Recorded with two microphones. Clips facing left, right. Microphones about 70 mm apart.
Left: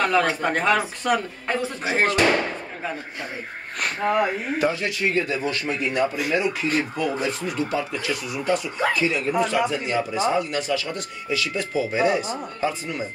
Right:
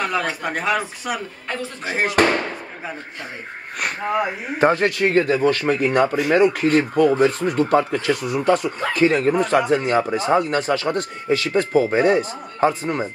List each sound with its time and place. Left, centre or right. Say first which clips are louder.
0.0 s speech: left 2 dB; centre
2.2 s speech: right 4 dB; right
3.8 s speech: even; centre
4.6 s speech: right 9 dB; right